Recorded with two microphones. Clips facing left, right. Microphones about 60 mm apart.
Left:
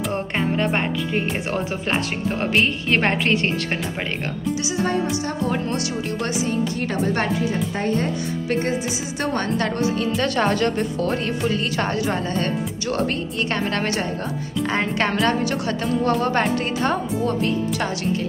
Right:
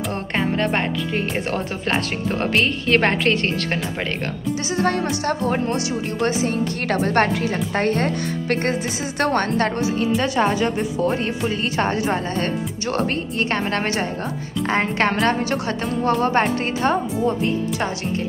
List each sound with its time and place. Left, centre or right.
0.1 s a woman's voice: centre
2.4 s a woman's voice: centre
4.6 s a woman's voice: right
6.2 s a woman's voice: right
10.1 s a woman's voice: centre; by 16.3 s right
16.3 s speech: right